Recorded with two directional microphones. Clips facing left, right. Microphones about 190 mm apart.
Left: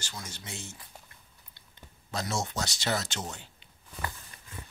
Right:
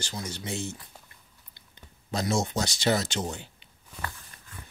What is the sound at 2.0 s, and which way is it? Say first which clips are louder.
Speech: right 6 dB; 15° right (ahead or behind).